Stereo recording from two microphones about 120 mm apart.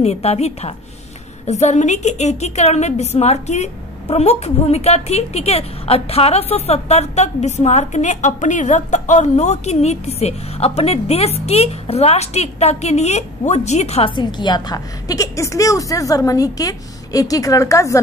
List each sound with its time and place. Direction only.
0.0 s a woman's voice: 60° left (ahead or behind)
1.4 s a woman's voice: 70° left (ahead or behind)
14.1 s a woman's voice: 35° left (ahead or behind)